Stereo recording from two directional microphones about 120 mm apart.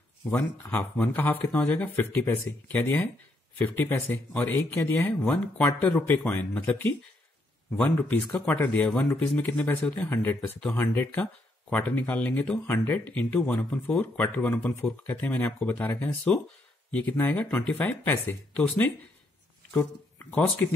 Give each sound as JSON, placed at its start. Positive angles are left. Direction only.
{"t": 0.2, "sound": "speech", "side_deg": 15}
{"t": 4.1, "sound": "speech", "side_deg": 15}